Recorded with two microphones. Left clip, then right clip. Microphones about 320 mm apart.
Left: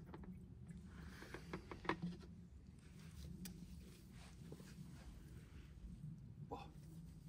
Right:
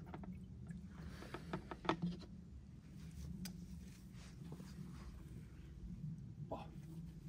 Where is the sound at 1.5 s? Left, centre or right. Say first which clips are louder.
Right 4 dB; right.